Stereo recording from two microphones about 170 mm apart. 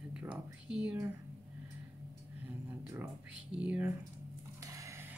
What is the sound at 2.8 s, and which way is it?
Speech, 15° right (ahead or behind).